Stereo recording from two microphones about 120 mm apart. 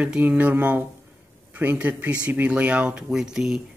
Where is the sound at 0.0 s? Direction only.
10° right (ahead or behind).